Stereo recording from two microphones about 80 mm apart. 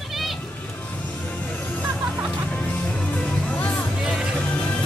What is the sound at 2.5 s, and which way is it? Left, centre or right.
Music, centre.